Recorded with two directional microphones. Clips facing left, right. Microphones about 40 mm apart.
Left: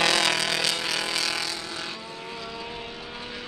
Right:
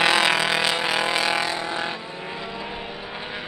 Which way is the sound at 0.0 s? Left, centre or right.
Right.